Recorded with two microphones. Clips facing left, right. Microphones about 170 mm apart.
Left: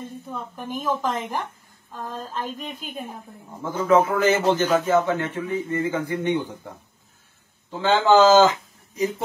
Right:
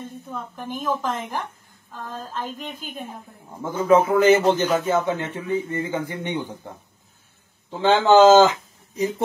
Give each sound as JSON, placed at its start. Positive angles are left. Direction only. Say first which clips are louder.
{"t": 0.3, "sound": "a woman's voice", "louder": "even", "side_deg": 0}
{"t": 3.8, "sound": "speech", "louder": "right 2 dB", "side_deg": -15}
{"t": 7.8, "sound": "speech", "louder": "right 2 dB", "side_deg": -20}